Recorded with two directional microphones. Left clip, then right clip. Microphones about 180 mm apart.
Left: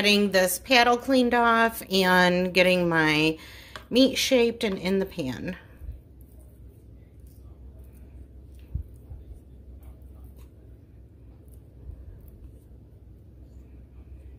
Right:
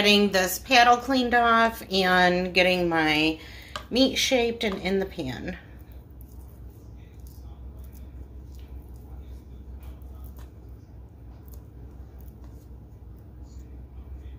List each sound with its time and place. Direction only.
0.0 s a woman's voice: 40° left (ahead or behind)